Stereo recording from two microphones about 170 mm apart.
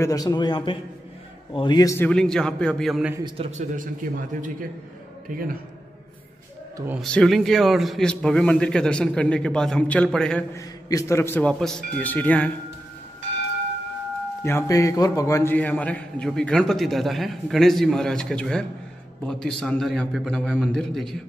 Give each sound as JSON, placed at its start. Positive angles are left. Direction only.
{"t": 0.0, "sound": "a man's voice", "side_deg": 20}
{"t": 2.0, "sound": "a man's voice", "side_deg": 5}
{"t": 3.3, "sound": "a man's voice", "side_deg": -35}
{"t": 7.0, "sound": "a man's voice", "side_deg": 5}
{"t": 10.5, "sound": "a man's voice", "side_deg": 20}
{"t": 14.4, "sound": "a man's voice", "side_deg": 15}